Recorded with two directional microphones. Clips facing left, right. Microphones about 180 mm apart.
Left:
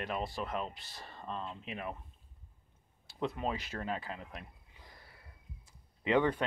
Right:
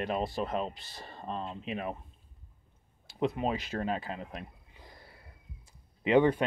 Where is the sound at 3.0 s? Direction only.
15° right (ahead or behind).